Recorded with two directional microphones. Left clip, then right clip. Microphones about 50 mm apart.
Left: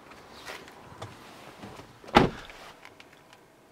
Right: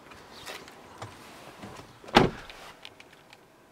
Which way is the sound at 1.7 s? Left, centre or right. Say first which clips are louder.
Even; right.